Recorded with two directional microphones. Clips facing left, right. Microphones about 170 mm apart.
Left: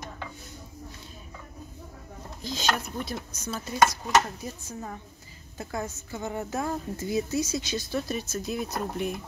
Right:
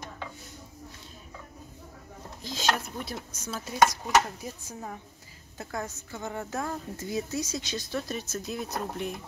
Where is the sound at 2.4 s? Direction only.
5° right (ahead or behind).